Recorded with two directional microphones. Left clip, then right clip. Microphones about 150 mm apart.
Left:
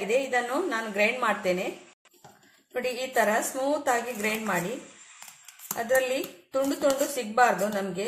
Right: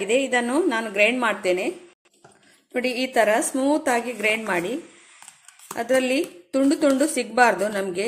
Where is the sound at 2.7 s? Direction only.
80° right.